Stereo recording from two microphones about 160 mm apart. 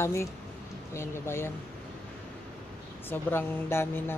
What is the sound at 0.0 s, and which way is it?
Speech, 15° left (ahead or behind).